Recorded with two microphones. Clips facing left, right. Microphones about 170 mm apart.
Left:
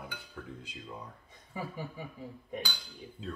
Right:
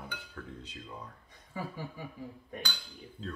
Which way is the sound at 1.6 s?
20° left (ahead or behind).